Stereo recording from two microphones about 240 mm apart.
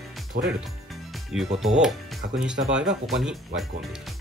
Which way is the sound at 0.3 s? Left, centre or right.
Right.